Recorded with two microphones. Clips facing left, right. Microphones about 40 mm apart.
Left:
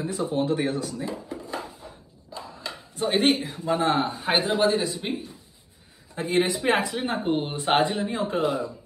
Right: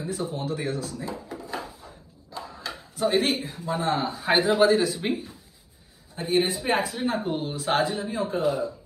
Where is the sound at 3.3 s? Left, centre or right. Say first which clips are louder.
Left 4 dB; left.